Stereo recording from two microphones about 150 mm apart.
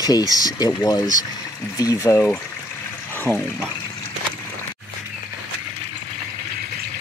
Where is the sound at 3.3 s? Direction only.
10° left (ahead or behind).